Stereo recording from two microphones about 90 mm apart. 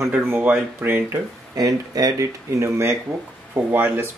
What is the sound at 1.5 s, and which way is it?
Speech, 45° right (ahead or behind).